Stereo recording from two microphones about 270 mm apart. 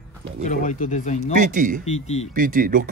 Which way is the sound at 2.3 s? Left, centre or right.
Right.